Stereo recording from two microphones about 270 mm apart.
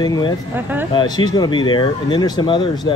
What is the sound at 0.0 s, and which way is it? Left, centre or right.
Speech, centre.